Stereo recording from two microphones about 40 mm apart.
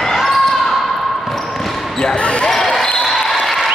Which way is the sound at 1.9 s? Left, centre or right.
Centre.